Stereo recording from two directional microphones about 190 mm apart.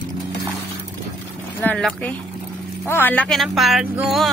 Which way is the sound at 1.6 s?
10° left (ahead or behind).